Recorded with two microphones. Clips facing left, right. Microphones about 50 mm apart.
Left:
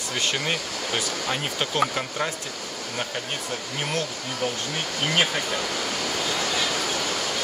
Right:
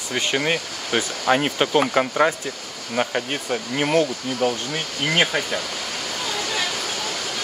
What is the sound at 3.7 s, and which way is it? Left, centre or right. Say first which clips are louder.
Speech: right 10 dB; right.